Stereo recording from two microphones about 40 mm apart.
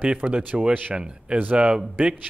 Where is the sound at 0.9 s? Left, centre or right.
Right.